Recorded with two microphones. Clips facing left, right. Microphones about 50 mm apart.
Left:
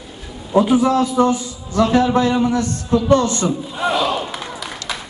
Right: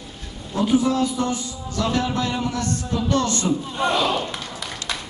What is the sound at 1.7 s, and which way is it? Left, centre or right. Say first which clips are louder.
A man's voice: left 8 dB; left.